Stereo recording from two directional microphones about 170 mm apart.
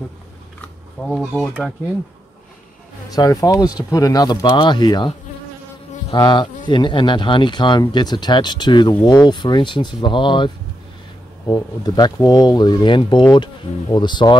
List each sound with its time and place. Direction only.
0.6 s a sound: centre (ahead or behind)
3.1 s speech: 20° left (ahead or behind)
6.1 s speech: 25° left (ahead or behind)